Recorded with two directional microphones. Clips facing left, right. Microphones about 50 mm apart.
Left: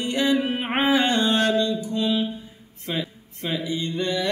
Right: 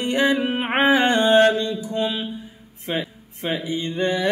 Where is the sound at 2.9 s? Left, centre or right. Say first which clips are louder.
Right 2 dB; right.